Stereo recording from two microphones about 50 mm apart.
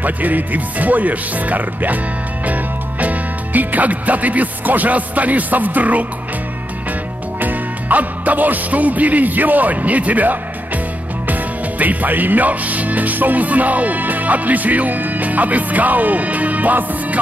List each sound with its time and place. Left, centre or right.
0.0 s speech: right
2.4 s music: right
7.3 s speech: right
11.8 s speech: right